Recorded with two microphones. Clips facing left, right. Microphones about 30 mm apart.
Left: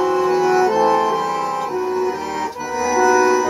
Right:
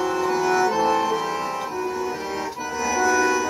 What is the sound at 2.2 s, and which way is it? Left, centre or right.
Music, left.